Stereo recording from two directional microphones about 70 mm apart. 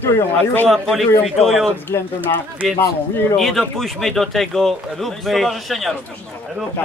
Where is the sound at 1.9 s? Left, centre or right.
Left.